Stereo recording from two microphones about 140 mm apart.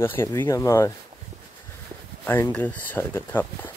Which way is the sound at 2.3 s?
15° left (ahead or behind).